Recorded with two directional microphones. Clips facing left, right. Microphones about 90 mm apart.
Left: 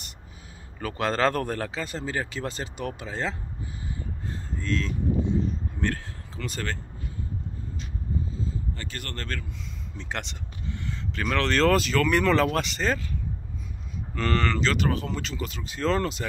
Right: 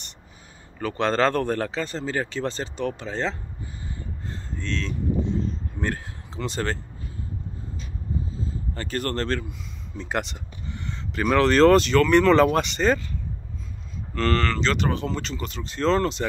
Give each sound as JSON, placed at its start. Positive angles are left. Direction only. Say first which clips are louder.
{"t": 0.7, "sound": "speech", "louder": "right 4 dB", "side_deg": 5}
{"t": 4.3, "sound": "a sound", "louder": "left 2 dB", "side_deg": 10}
{"t": 5.8, "sound": "speech", "louder": "right 1 dB", "side_deg": 0}
{"t": 6.3, "sound": "speech", "louder": "right 5 dB", "side_deg": -25}
{"t": 8.5, "sound": "speech", "louder": "right 2 dB", "side_deg": -40}
{"t": 9.9, "sound": "a sound", "louder": "right 7 dB", "side_deg": -5}
{"t": 11.7, "sound": "speech", "louder": "right 6 dB", "side_deg": 5}
{"t": 14.1, "sound": "speech", "louder": "right 3 dB", "side_deg": 10}